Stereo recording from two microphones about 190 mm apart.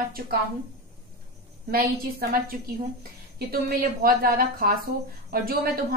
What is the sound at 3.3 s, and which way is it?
A woman's voice, 55° right (ahead or behind).